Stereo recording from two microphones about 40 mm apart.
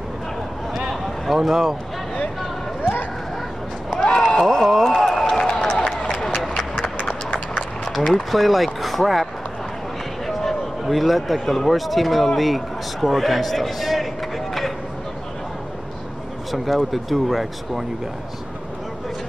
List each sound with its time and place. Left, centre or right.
1.3 s speech: centre
2.8 s a sound: left
3.9 s run: left
4.4 s speech: centre
4.8 s a sound: centre
6.2 s run: centre
7.2 s run: left
8.1 s a man's voice: centre
16.5 s speech: centre